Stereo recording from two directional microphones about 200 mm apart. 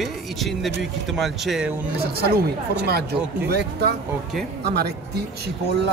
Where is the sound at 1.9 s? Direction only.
50° right (ahead or behind).